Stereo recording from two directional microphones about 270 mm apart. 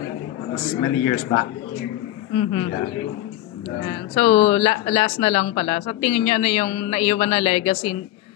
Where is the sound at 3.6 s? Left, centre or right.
Centre.